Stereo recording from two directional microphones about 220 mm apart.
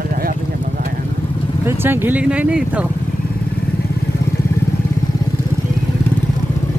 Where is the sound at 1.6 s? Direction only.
10° right (ahead or behind).